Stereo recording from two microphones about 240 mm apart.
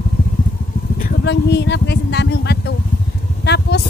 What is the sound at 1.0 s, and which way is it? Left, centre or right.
Speech, left.